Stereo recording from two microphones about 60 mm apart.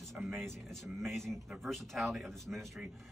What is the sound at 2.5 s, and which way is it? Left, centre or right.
Speech, centre.